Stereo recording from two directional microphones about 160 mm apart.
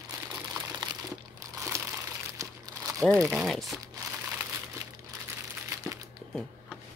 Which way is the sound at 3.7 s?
20° right (ahead or behind).